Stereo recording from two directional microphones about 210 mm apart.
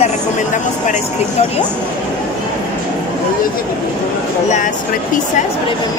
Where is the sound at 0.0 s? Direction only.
35° left (ahead or behind).